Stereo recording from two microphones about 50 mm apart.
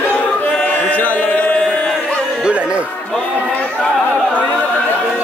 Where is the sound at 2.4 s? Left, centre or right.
Right.